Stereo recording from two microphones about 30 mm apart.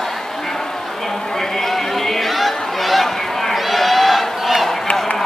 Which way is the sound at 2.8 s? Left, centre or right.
Centre.